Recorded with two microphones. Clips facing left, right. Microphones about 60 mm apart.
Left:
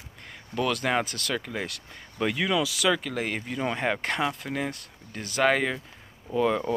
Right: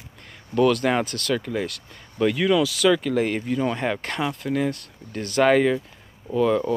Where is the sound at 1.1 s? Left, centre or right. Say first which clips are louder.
Right 6 dB; centre.